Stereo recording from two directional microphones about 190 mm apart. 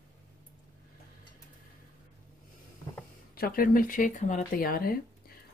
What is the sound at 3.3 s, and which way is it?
Speech, 50° left (ahead or behind).